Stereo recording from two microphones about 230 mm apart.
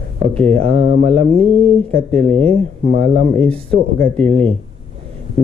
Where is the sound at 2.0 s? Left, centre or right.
Centre.